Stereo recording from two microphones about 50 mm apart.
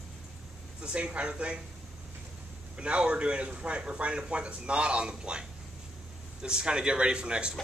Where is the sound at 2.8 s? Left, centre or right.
Right.